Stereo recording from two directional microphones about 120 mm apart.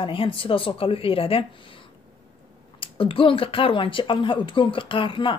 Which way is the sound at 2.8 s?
50° left (ahead or behind).